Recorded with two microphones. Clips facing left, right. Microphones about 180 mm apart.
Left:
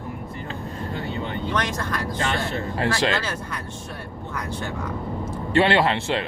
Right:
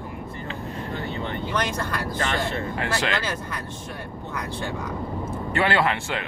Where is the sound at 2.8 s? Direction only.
30° left (ahead or behind).